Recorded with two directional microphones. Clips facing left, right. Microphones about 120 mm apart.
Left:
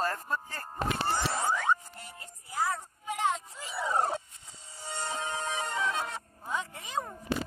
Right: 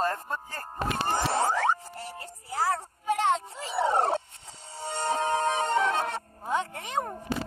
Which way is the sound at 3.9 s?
70° right (ahead or behind).